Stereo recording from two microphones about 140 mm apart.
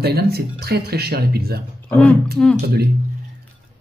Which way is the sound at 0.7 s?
90° right.